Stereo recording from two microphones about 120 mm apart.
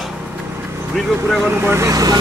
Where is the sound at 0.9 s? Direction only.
Centre (ahead or behind).